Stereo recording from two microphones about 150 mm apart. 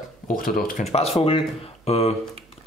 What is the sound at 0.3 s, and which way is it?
Speech, 70° left (ahead or behind).